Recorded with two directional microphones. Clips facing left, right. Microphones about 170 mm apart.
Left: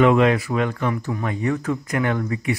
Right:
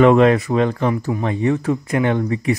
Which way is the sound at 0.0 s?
40° right (ahead or behind).